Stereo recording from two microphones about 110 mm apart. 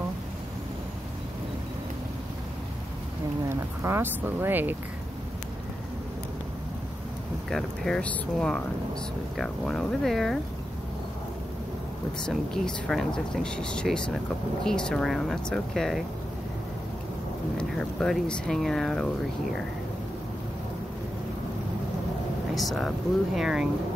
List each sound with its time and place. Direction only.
3.4 s speech: 25° right (ahead or behind)
7.4 s speech: 5° left (ahead or behind)
12.3 s speech: 5° left (ahead or behind)
17.6 s speech: 10° left (ahead or behind)
22.5 s speech: centre (ahead or behind)